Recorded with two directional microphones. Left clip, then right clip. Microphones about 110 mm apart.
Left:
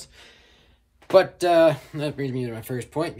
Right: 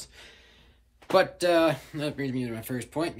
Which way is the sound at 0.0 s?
20° left (ahead or behind).